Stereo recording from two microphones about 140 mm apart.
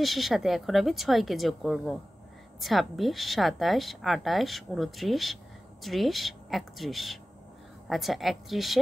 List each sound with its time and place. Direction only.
0.0 s a woman's voice: centre (ahead or behind)